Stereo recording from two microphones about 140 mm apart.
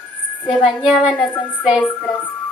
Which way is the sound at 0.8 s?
10° left (ahead or behind).